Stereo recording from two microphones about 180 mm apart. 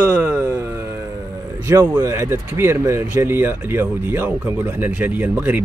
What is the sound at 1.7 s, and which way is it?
Speech, 20° right (ahead or behind).